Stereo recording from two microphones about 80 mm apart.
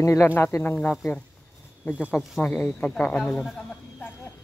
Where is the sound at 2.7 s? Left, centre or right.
Centre.